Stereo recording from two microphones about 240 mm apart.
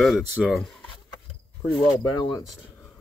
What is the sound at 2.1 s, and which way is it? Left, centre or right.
Speech, centre.